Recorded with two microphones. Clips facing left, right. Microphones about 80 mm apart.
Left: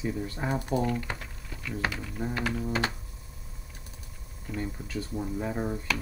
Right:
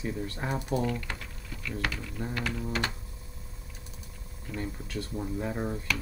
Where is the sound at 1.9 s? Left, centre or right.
Centre.